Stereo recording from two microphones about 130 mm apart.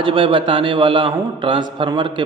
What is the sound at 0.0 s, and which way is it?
A man's voice, 40° right (ahead or behind).